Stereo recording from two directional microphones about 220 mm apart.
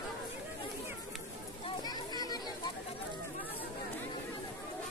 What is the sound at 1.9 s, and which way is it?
Children playing, 20° left (ahead or behind).